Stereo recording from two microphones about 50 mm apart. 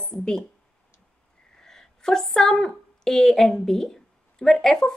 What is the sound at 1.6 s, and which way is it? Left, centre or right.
A woman's voice, centre.